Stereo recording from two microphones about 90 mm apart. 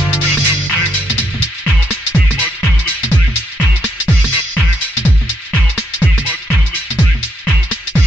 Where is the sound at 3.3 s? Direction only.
15° right (ahead or behind).